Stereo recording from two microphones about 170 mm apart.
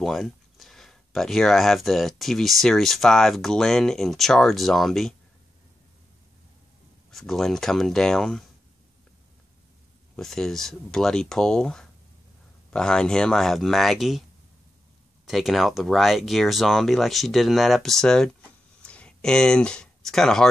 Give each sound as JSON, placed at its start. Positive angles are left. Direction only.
{"t": 0.0, "sound": "speech", "side_deg": 0}
{"t": 7.1, "sound": "speech", "side_deg": 0}
{"t": 10.1, "sound": "speech", "side_deg": 0}
{"t": 15.2, "sound": "speech", "side_deg": 0}
{"t": 18.8, "sound": "a sound", "side_deg": 5}